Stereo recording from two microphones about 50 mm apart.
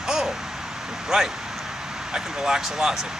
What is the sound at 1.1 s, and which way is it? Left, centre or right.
Speech, centre.